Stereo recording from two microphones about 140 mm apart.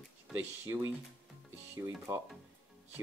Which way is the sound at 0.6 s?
20° right (ahead or behind).